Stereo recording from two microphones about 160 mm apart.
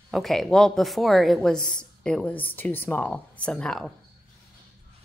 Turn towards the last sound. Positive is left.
turn(degrees=5)  # may be behind; listen again after turning